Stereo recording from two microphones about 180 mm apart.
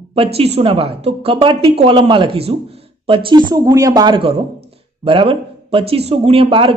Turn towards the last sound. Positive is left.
turn(degrees=-30)  # may be behind; listen again after turning